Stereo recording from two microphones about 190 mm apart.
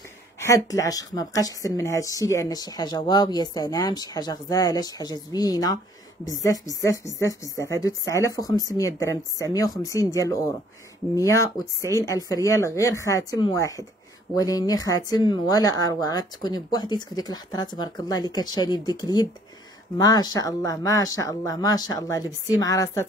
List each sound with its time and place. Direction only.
0.4 s a woman's voice: 15° left (ahead or behind)